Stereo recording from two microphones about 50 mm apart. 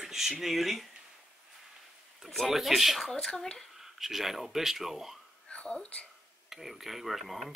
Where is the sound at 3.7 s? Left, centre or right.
Centre.